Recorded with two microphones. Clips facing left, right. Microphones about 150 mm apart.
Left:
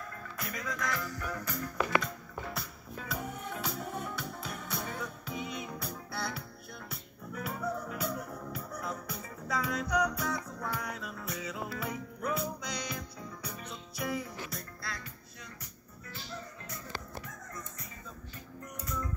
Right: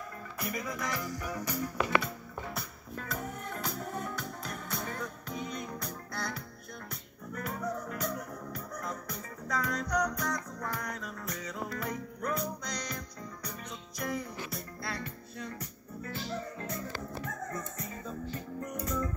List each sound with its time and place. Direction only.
0.4 s music: 10° right (ahead or behind)
14.8 s music: 30° right (ahead or behind)
17.2 s music: 50° right (ahead or behind)